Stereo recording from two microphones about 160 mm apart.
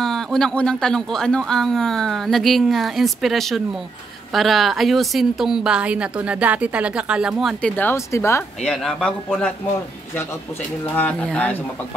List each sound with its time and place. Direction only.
0.0 s speech: 5° left (ahead or behind)
7.7 s speech: 15° left (ahead or behind)
8.6 s speech: centre (ahead or behind)
11.0 s speech: 5° left (ahead or behind)